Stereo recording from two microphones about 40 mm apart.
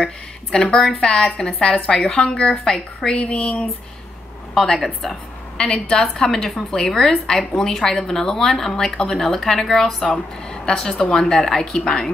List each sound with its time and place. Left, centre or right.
0.0 s a woman's voice: centre
4.7 s a woman's voice: centre
5.6 s a woman's voice: centre
9.1 s a woman's voice: centre